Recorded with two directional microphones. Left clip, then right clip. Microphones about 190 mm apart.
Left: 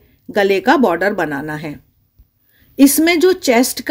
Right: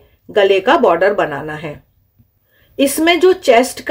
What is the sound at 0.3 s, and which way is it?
Speech, 40° left (ahead or behind).